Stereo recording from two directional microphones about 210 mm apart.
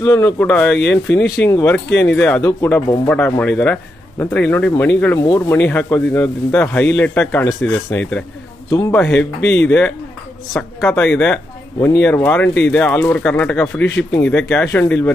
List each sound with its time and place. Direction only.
0.0 s speech: 15° left (ahead or behind)
9.4 s speech: 55° left (ahead or behind)
9.7 s speech: 5° left (ahead or behind)